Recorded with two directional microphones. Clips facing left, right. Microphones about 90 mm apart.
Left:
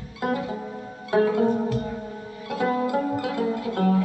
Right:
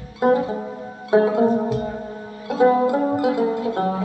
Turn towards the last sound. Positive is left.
turn(degrees=-25)  # may be behind; listen again after turning